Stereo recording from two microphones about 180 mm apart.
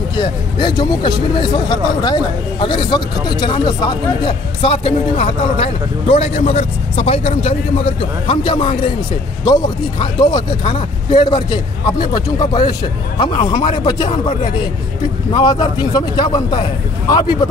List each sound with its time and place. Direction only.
0.2 s a man's voice: 25° left (ahead or behind)
15.3 s speech: 25° left (ahead or behind)